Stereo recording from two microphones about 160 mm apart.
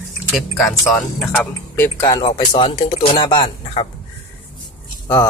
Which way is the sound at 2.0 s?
25° left (ahead or behind).